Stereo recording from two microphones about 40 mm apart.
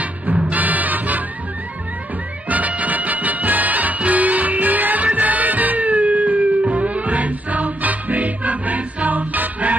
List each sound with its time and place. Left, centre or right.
0.5 s music: right
2.5 s music: right